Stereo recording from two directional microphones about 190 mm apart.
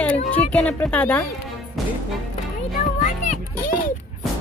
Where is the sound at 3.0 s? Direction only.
40° left (ahead or behind).